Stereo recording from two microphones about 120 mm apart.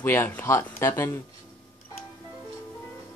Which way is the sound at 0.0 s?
20° left (ahead or behind).